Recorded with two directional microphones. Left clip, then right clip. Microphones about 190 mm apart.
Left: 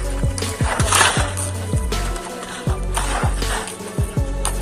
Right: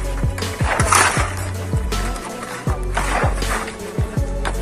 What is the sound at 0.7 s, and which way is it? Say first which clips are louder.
Music: right 1 dB; 35° right (ahead or behind).